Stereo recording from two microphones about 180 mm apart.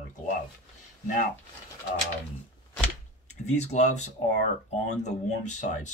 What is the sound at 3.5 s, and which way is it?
Speech, 40° left (ahead or behind).